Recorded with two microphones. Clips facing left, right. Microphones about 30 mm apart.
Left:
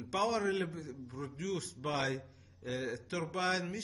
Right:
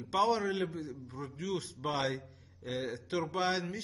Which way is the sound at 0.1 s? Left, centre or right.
Centre.